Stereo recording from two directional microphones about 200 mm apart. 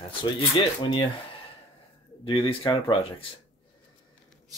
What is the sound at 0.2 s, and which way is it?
Speech, 20° left (ahead or behind).